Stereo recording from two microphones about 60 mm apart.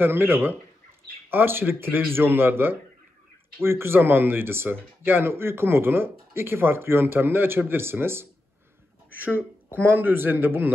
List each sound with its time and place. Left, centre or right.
0.0 s speech: right